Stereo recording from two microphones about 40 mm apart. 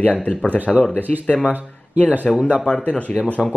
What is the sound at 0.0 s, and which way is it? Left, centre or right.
Speech, left.